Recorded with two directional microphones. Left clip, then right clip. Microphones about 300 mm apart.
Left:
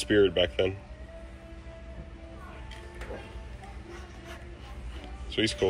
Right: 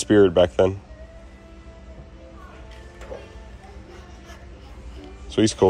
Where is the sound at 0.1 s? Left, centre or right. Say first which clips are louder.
Right 8 dB; right.